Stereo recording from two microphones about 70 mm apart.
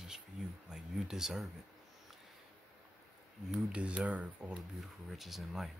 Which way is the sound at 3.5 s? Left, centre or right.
Centre.